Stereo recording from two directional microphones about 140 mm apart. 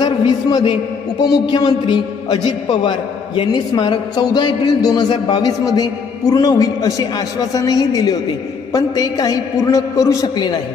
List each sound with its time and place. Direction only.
0.0 s a man's voice: 30° left (ahead or behind)